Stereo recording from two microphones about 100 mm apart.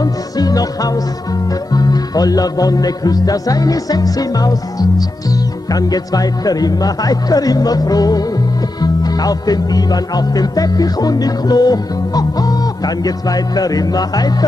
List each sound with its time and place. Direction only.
0.0 s music: 40° left (ahead or behind)